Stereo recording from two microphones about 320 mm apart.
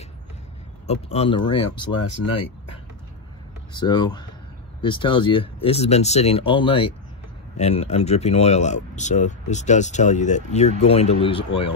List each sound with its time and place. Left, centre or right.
1.0 s speech: centre
2.3 s a sound: centre
3.7 s speech: centre